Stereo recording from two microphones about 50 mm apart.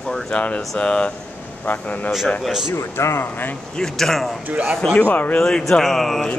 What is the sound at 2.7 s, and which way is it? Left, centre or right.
Speech, left.